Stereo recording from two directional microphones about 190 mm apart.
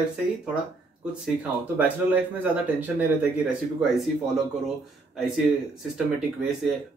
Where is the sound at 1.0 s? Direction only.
5° right (ahead or behind).